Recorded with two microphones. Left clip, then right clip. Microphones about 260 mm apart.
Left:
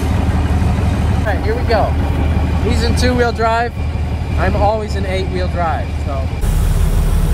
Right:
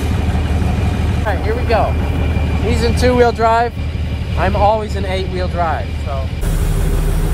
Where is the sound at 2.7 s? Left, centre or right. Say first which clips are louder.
Right 3 dB; right.